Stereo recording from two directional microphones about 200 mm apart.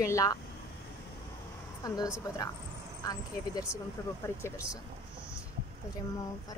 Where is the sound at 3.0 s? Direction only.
20° left (ahead or behind).